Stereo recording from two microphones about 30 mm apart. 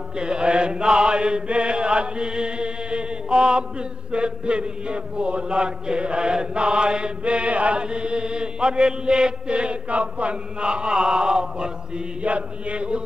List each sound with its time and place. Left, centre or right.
0.2 s chant: right
9.5 s chant: right
12.2 s chant: right